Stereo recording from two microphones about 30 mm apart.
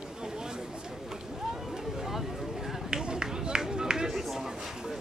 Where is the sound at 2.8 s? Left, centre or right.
Right.